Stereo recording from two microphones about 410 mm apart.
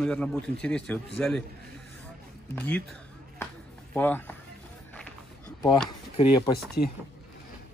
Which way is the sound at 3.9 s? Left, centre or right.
Centre.